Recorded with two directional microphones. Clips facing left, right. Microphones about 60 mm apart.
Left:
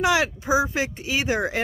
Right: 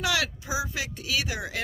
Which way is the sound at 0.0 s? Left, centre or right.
Left.